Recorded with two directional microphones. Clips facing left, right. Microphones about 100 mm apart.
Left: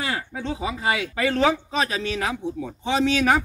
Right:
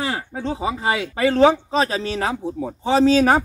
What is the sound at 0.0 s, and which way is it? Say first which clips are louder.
A man's voice: right 3 dB; 30° right (ahead or behind).